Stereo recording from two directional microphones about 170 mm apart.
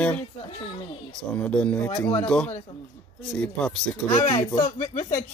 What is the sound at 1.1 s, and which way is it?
Speech, 5° left (ahead or behind).